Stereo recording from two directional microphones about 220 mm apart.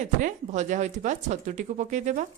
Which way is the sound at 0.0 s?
35° right (ahead or behind).